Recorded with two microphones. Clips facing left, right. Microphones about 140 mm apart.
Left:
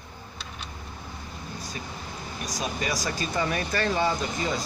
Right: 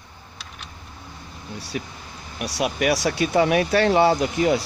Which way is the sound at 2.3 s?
75° right (ahead or behind).